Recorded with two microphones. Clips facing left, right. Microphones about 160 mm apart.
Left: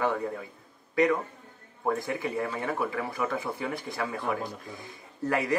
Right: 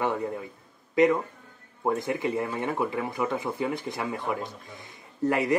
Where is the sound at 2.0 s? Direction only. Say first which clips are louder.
Right 3 dB; 20° right (ahead or behind).